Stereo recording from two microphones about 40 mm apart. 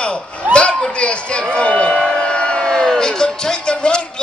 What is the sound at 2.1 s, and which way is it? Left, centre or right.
Music, left.